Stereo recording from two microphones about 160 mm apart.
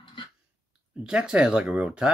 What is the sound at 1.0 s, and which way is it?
Speech, 5° right (ahead or behind).